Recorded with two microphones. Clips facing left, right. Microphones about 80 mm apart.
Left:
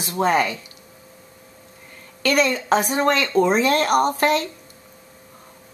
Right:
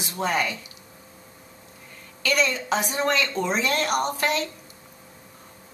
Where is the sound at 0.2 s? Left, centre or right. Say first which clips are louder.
Left 6 dB; left.